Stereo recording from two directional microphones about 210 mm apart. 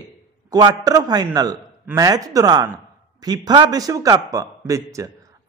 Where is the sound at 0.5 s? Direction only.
20° right (ahead or behind).